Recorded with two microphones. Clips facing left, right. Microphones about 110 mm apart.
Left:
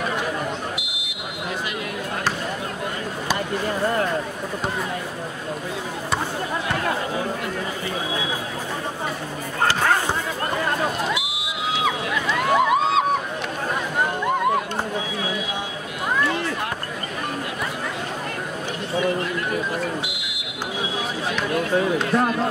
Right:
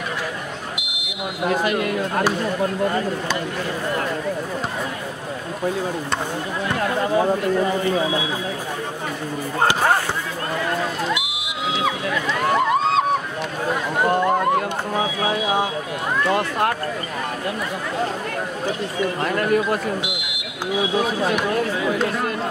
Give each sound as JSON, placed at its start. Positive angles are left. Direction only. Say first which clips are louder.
{"t": 1.5, "sound": "speech", "louder": "right 9 dB", "side_deg": -50}
{"t": 12.5, "sound": "a sound", "louder": "even", "side_deg": 5}
{"t": 19.2, "sound": "speech", "louder": "right 6 dB", "side_deg": -60}